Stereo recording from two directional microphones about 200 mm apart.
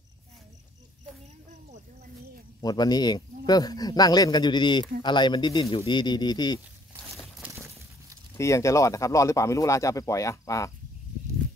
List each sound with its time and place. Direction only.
2.6 s speech: 20° left (ahead or behind)
7.3 s a sound: 10° right (ahead or behind)
8.4 s speech: 15° left (ahead or behind)